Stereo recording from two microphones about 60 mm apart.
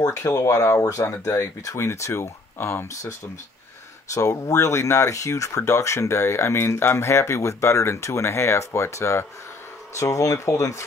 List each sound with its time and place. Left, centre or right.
0.0 s speech: left
1.8 s speech: left
4.1 s speech: left